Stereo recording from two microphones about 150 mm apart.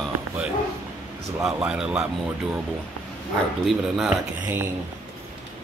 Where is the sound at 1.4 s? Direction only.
5° right (ahead or behind).